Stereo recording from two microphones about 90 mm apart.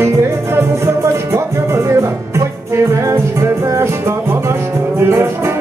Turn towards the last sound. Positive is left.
turn(degrees=-25)  # may be behind; listen again after turning